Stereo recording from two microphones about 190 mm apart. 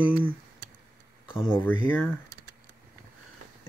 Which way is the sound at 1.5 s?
10° left (ahead or behind).